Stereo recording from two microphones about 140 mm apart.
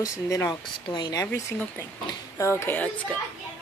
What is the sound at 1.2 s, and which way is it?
Speech, 15° left (ahead or behind).